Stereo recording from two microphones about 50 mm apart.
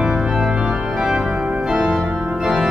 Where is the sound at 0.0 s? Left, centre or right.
Centre.